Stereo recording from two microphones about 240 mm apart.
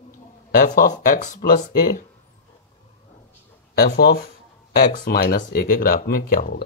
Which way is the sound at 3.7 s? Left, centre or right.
Left.